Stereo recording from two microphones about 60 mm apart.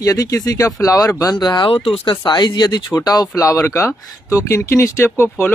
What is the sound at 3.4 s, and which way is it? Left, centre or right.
Speech, left.